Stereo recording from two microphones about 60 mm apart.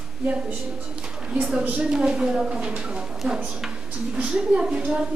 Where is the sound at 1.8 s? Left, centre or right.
Centre.